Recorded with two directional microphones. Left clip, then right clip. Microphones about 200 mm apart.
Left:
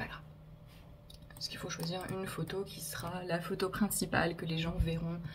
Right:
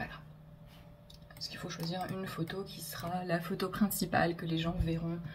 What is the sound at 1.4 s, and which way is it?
Speech, 20° left (ahead or behind).